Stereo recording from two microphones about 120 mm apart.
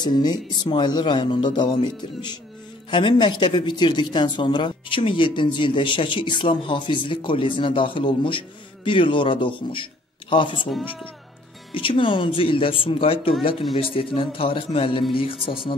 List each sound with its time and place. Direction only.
0.0 s speech: 35° left (ahead or behind)
11.7 s speech: 45° left (ahead or behind)